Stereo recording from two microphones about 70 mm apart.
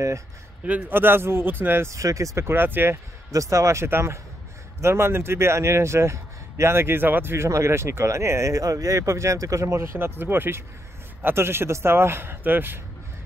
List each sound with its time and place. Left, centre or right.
0.7 s a man's voice: right
1.9 s a man's voice: right
3.3 s a man's voice: right
7.4 s speech: right
9.9 s a man's voice: right